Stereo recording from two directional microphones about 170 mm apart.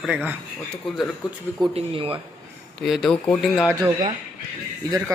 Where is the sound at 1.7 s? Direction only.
35° right (ahead or behind).